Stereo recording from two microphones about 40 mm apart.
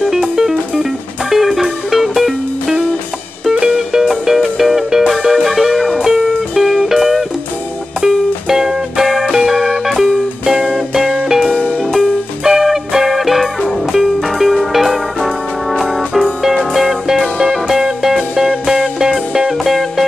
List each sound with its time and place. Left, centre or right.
0.0 s music: centre
3.7 s music: centre
4.6 s music: centre
11.8 s music: centre
16.7 s music: centre
19.6 s music: centre